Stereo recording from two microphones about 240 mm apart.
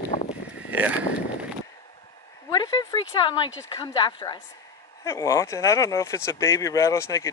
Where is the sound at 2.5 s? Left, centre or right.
Centre.